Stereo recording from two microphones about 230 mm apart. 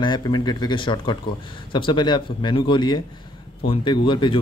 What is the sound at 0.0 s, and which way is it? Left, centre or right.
A man's voice, centre.